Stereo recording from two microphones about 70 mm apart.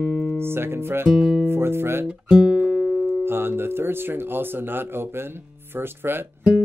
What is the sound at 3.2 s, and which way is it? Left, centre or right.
Speech, right.